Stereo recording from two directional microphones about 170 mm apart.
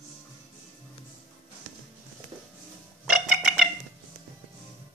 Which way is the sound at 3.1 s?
Centre (ahead or behind).